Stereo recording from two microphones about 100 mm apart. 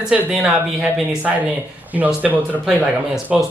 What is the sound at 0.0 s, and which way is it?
A man's voice, 10° right (ahead or behind).